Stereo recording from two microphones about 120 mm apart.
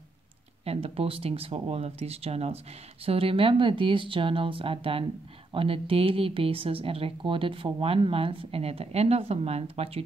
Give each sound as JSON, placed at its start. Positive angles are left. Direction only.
{"t": 0.7, "sound": "speech", "side_deg": -55}